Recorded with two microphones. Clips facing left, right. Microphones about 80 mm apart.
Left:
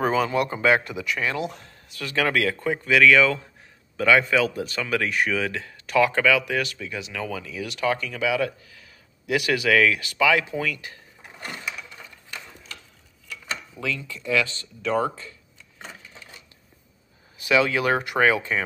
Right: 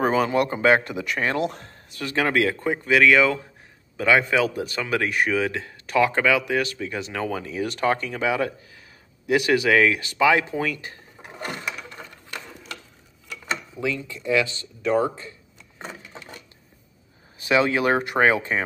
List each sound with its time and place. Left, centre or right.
0.0 s speech: right
2.0 s speech: right
13.7 s speech: right
15.8 s a sound: right
17.4 s speech: right